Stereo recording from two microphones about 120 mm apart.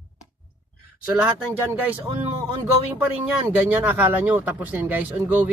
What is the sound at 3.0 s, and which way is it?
Speech, 15° right (ahead or behind).